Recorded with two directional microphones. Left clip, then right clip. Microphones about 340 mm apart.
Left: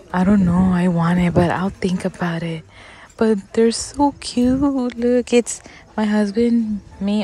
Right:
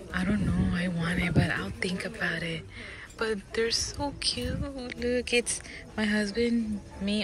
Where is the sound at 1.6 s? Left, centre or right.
Centre.